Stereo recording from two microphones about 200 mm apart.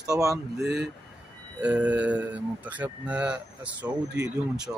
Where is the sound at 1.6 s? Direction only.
5° right (ahead or behind).